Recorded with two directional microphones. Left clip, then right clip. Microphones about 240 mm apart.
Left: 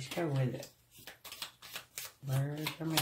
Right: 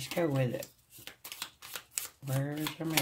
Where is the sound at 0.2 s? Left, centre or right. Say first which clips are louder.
Right 5 dB; right.